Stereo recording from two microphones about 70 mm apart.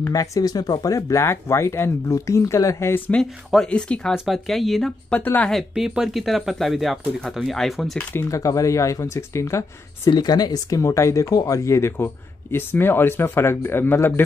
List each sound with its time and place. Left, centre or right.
0.1 s speech: left
1.2 s speech: left
3.1 s speech: centre
4.1 s speech: centre
5.2 s speech: left
5.5 s speech: centre
8.3 s speech: left
10.0 s a man's voice: left